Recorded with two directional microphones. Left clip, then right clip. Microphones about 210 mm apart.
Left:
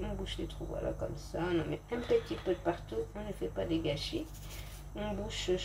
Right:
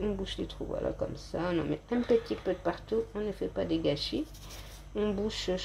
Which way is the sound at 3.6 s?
50° right (ahead or behind).